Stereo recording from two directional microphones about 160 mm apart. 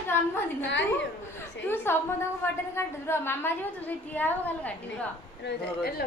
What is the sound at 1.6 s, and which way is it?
A woman's voice, 15° left (ahead or behind).